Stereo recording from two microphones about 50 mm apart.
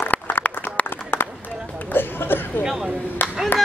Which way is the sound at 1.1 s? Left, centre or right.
Left.